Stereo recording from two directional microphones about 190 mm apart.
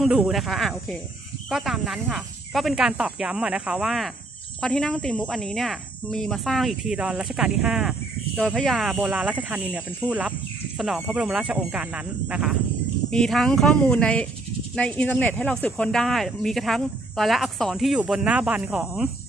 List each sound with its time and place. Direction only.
0.0 s speech: centre (ahead or behind)